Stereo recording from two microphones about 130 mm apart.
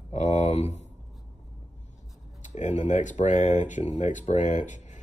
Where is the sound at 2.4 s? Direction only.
65° left (ahead or behind).